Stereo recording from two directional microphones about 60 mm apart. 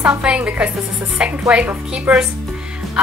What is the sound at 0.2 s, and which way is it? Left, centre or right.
Speech, centre.